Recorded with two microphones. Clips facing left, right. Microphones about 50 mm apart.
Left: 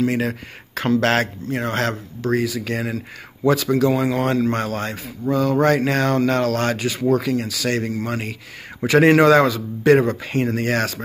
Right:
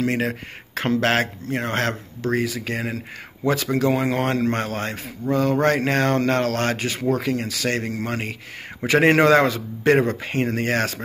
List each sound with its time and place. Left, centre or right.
0.1 s a man's voice: right
1.0 s a man's voice: right